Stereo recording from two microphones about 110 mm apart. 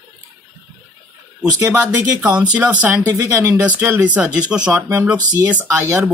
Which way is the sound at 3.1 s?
25° right (ahead or behind).